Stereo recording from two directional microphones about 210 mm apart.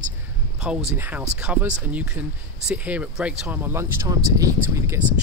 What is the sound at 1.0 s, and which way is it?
Speech, 10° right (ahead or behind).